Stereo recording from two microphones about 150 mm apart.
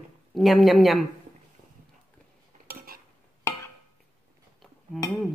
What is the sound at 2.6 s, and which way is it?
Cutlery, 80° right.